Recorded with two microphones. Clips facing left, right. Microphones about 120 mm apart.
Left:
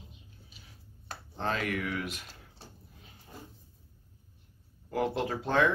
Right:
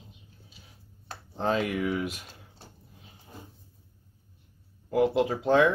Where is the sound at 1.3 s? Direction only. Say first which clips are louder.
Right 5 dB; 15° right (ahead or behind).